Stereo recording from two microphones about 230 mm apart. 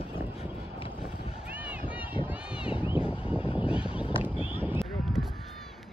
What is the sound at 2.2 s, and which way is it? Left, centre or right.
Run, centre.